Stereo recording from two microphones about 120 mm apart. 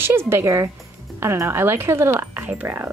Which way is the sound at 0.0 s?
20° right (ahead or behind).